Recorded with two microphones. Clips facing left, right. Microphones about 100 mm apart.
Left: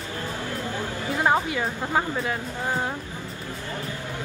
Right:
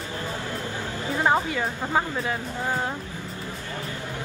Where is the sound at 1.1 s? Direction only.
10° left (ahead or behind).